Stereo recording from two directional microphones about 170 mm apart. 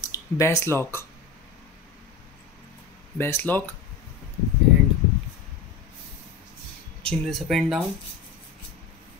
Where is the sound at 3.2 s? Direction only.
10° left (ahead or behind).